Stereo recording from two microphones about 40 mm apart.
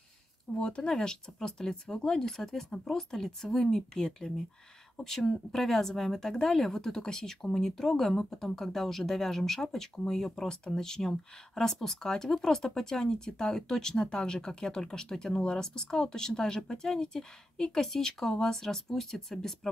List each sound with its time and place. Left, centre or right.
0.6 s speech: centre